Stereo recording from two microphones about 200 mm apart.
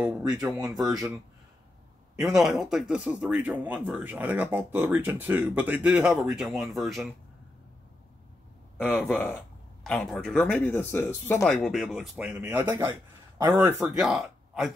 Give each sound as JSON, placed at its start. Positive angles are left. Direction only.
{"t": 0.0, "sound": "speech", "side_deg": -5}
{"t": 0.4, "sound": "speech", "side_deg": -20}
{"t": 2.3, "sound": "speech", "side_deg": 0}
{"t": 9.0, "sound": "speech", "side_deg": 10}